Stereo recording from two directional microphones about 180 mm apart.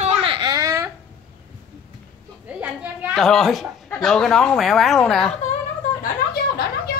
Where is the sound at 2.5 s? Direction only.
10° right (ahead or behind).